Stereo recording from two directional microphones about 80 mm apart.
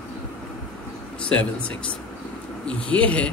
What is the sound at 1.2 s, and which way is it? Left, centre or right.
Speech, centre.